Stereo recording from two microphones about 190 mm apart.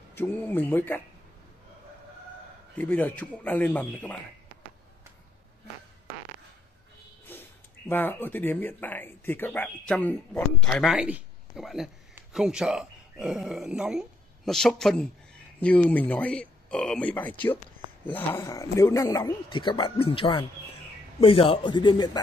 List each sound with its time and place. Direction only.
0.1 s speech: 10° left (ahead or behind)
2.8 s speech: 10° left (ahead or behind)
7.3 s a sound: 10° left (ahead or behind)
7.9 s speech: 10° left (ahead or behind)